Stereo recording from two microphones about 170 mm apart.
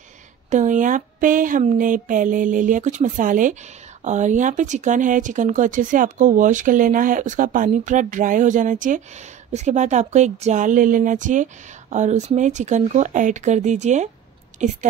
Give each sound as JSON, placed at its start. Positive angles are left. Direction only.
{"t": 0.5, "sound": "speech", "side_deg": -45}